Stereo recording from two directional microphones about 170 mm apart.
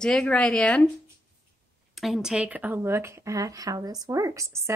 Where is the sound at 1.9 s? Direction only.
Centre (ahead or behind).